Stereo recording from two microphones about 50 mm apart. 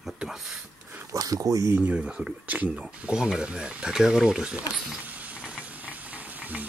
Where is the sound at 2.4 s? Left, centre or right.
Right.